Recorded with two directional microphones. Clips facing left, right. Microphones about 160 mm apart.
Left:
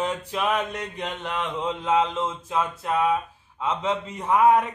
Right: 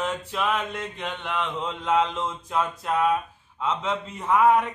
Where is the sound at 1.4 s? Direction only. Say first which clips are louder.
Left 4 dB; 10° left (ahead or behind).